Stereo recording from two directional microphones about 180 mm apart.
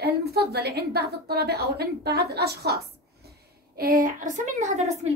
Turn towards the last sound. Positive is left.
turn(degrees=-40)  # may be behind; listen again after turning